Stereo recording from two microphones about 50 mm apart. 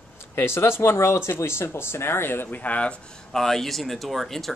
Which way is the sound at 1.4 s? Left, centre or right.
Left.